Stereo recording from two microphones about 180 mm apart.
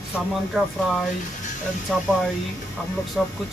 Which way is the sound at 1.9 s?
Centre (ahead or behind).